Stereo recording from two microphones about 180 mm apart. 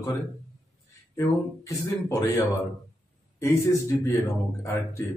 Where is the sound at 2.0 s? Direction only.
20° left (ahead or behind).